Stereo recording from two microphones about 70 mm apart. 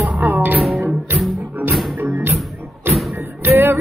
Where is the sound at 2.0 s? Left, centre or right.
Right.